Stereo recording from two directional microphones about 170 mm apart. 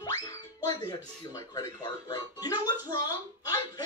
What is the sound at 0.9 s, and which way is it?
Speech, 20° left (ahead or behind).